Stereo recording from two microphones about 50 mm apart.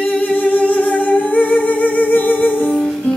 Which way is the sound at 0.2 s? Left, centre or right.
Left.